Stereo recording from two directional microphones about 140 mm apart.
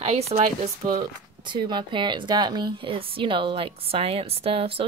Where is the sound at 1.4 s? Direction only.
35° right (ahead or behind).